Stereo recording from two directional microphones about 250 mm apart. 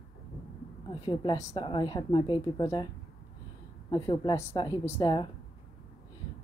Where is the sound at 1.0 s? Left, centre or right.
Centre.